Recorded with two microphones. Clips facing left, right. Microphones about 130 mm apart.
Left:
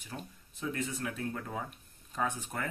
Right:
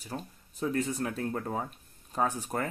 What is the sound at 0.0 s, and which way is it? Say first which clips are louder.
Speech: right 5 dB; 35° right (ahead or behind).